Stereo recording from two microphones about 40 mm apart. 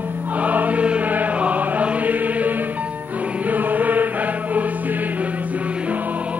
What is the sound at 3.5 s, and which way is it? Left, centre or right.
Chant, right.